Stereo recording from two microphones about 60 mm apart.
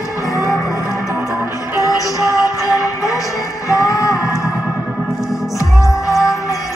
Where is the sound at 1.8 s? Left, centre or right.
Left.